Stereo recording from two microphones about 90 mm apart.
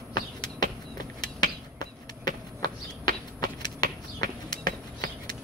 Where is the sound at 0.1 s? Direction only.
50° left (ahead or behind).